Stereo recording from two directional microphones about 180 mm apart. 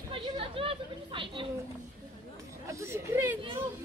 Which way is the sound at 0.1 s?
30° right (ahead or behind).